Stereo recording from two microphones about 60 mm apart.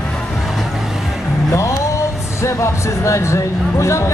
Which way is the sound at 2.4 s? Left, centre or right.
Left.